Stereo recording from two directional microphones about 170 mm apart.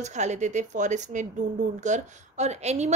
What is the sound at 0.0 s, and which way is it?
Speech, 45° right (ahead or behind).